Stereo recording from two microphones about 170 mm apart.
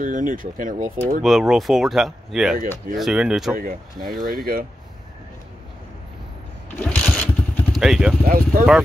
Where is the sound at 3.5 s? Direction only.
60° right (ahead or behind).